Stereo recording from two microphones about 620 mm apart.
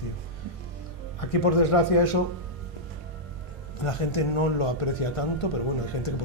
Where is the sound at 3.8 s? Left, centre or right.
Left.